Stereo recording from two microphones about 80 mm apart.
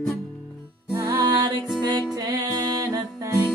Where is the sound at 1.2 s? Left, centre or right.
Right.